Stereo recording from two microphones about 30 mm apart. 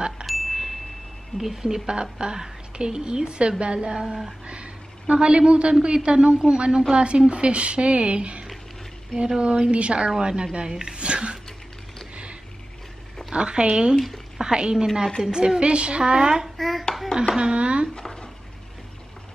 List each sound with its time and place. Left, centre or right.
0.3 s wind chime: centre
1.4 s a woman's voice: centre; by 3.9 s right
3.9 s a woman's voice: right
4.5 s a sound: right
5.1 s a woman's voice: right
13.3 s a woman's voice: right
13.9 s speech: centre
14.4 s a woman's voice: right
15.6 s a woman's voice: right
16.0 s a woman's voice: right
16.5 s hands: centre
17.4 s a sound: right
17.9 s dishes: centre